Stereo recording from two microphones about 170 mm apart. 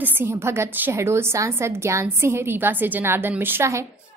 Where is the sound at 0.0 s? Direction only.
10° right (ahead or behind).